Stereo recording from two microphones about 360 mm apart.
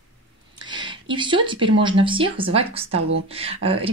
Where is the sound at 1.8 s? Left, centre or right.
Centre.